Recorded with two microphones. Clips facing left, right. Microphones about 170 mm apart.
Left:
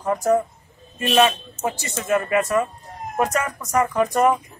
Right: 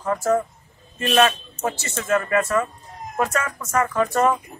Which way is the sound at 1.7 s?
15° left (ahead or behind).